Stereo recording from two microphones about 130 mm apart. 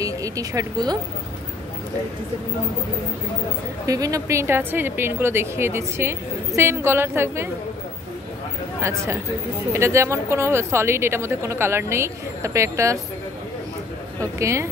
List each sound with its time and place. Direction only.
0.0 s a woman's voice: 25° right (ahead or behind)
3.8 s a woman's voice: 25° right (ahead or behind)
8.8 s a woman's voice: 20° right (ahead or behind)
14.2 s a woman's voice: 25° right (ahead or behind)